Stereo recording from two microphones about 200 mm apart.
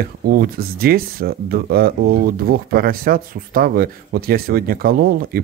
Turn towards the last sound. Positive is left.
turn(degrees=-50)  # may be behind; listen again after turning